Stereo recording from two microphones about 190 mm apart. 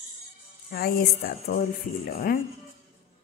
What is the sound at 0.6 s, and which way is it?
Speech, 50° left (ahead or behind).